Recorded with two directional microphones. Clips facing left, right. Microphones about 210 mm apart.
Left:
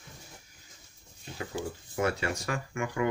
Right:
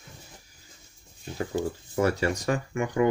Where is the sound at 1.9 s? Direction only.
35° right (ahead or behind).